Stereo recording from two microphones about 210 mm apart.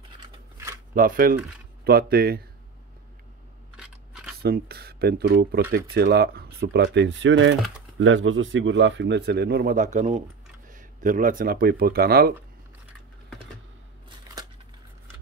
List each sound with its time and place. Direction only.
0.9 s speech: 40° right (ahead or behind)
3.7 s biting: centre (ahead or behind)
4.4 s speech: 45° right (ahead or behind)